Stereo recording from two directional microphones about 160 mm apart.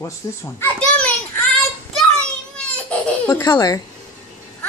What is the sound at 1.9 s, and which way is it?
Children playing, 5° left (ahead or behind).